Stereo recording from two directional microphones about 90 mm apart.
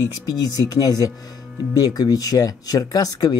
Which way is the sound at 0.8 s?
45° left (ahead or behind).